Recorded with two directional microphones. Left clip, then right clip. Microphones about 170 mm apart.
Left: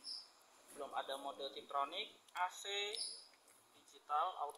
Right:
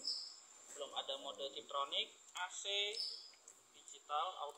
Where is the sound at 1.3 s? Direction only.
20° right (ahead or behind).